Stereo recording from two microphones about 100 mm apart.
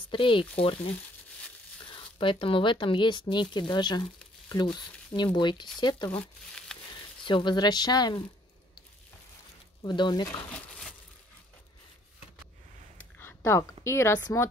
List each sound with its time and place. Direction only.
0.1 s speech: 60° left (ahead or behind)
5.1 s speech: 50° left (ahead or behind)
6.7 s a sound: 10° left (ahead or behind)
7.2 s speech: 55° left (ahead or behind)
9.8 s speech: 50° left (ahead or behind)
13.2 s a sound: 25° left (ahead or behind)
13.8 s speech: 25° left (ahead or behind)